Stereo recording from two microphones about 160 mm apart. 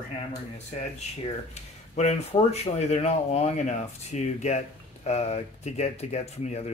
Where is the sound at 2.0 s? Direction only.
45° left (ahead or behind).